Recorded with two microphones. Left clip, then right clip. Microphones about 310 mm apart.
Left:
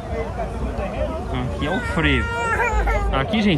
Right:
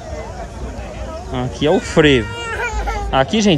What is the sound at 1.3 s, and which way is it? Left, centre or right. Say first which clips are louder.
Speech: right 11 dB; centre.